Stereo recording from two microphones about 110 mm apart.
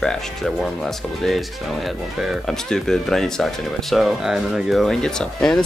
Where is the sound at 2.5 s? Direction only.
5° left (ahead or behind).